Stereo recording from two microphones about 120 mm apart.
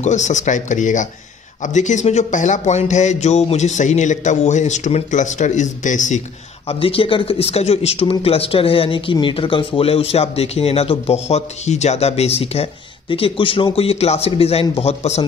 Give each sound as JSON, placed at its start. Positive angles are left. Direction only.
{"t": 0.0, "sound": "speech", "side_deg": 80}
{"t": 6.7, "sound": "speech", "side_deg": 50}
{"t": 13.1, "sound": "speech", "side_deg": 50}